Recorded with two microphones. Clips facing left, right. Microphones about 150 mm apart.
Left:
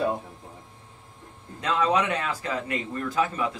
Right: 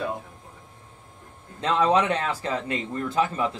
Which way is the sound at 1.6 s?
30° right (ahead or behind).